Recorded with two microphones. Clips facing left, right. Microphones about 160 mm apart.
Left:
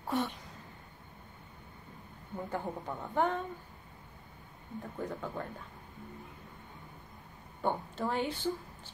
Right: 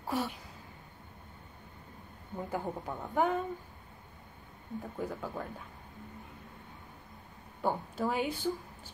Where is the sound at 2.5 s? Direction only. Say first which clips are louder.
Right 1 dB; 5° right (ahead or behind).